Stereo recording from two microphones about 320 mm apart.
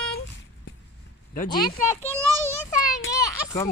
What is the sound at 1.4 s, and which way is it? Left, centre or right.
A child's voice, centre.